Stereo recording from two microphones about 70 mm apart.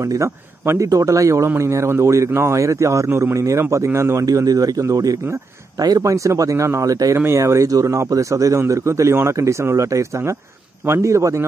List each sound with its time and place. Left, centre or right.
0.0 s speech: right
4.3 s speech: right
7.2 s speech: right